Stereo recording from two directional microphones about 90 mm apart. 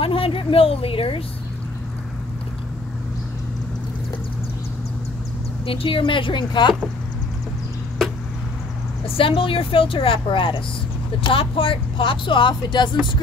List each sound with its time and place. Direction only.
0.0 s speech: 90° left
5.7 s speech: 80° left; by 6.7 s 60° left (ahead or behind)
9.0 s speech: 90° left; by 12.9 s 60° left (ahead or behind)